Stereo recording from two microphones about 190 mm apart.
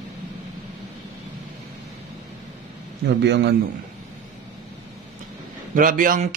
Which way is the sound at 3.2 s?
65° right (ahead or behind).